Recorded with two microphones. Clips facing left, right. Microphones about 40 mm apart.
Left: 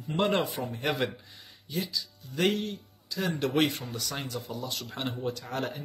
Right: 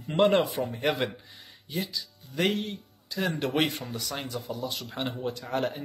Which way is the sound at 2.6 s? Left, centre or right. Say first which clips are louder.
Even; centre.